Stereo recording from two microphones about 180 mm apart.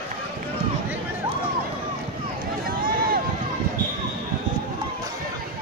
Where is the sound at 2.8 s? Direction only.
55° right (ahead or behind).